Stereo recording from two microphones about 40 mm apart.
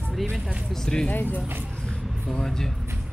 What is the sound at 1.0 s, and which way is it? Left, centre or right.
Speech, left.